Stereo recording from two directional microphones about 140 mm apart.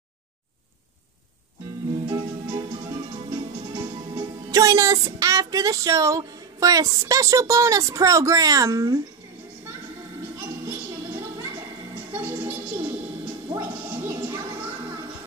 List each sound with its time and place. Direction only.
2.0 s music: 35° right (ahead or behind)
4.5 s speech: 25° right (ahead or behind)
12.1 s music: 15° right (ahead or behind)